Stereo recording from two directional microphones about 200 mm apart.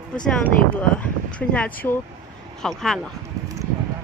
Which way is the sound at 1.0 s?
5° left (ahead or behind).